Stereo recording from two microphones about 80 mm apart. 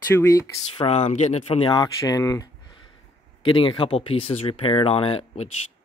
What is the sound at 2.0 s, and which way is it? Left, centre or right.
Speech, left.